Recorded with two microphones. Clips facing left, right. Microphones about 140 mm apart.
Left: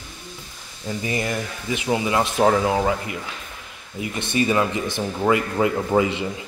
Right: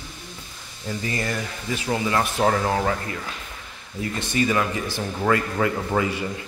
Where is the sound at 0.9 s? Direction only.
20° left (ahead or behind).